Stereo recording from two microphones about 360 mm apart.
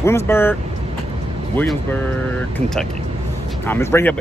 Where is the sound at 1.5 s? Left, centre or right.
Centre.